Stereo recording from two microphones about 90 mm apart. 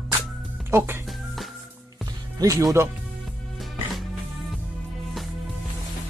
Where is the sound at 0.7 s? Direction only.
30° right (ahead or behind).